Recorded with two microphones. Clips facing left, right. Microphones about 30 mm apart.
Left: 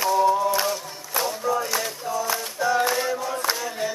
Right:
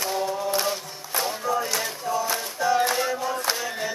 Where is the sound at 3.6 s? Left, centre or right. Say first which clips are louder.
Left 1 dB; centre.